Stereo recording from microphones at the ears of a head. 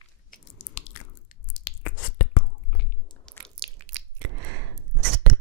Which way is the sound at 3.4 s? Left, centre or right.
Right.